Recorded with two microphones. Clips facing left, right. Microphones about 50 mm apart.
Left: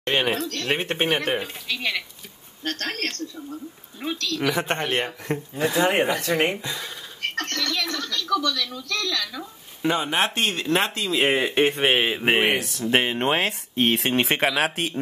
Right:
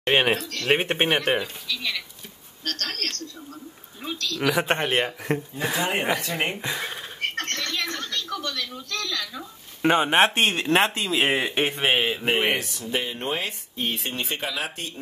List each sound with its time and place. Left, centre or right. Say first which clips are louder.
0.0 s speech: right 2 dB; right
0.4 s speech: left 4 dB; left
0.7 s speech: right 3 dB; centre
1.4 s a woman's voice: left 2 dB; left
4.5 s a man's voice: right 2 dB; centre
5.8 s speech: left 4 dB; left
6.6 s speech: right 3 dB; right
7.5 s television: left 2 dB; left
9.8 s speech: right 4 dB; right
11.1 s speech: left 2 dB; centre
12.0 s speech: left 2 dB; centre
12.4 s speech: left 2 dB; centre
12.9 s speech: left 6 dB; left